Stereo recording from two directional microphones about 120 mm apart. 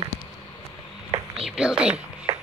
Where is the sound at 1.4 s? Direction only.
5° right (ahead or behind).